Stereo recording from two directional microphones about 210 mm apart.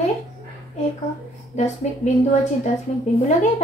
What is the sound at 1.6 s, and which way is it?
Speech, 35° left (ahead or behind).